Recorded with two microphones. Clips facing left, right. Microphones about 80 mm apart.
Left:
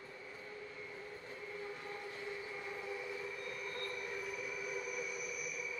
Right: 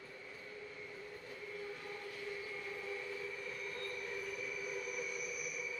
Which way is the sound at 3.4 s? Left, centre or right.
Centre.